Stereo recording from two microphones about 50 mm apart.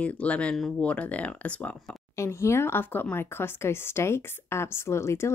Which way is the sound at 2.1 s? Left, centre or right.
Left.